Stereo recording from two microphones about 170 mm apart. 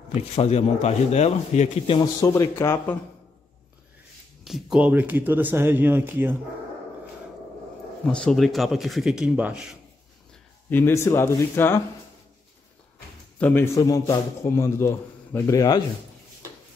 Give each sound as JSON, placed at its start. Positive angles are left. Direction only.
{"t": 0.1, "sound": "speech", "side_deg": 40}
{"t": 2.1, "sound": "a man's voice", "side_deg": 15}
{"t": 4.5, "sound": "speech", "side_deg": 0}
{"t": 8.0, "sound": "speech", "side_deg": 5}
{"t": 10.7, "sound": "a man's voice", "side_deg": 15}
{"t": 13.4, "sound": "a man's voice", "side_deg": 10}